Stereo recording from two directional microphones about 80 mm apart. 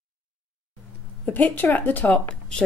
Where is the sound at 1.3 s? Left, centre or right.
Left.